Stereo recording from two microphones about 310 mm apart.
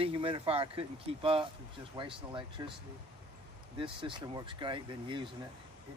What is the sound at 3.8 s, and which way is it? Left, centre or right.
Speech, centre.